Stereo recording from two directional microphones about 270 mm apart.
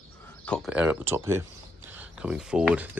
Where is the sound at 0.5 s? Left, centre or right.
Centre.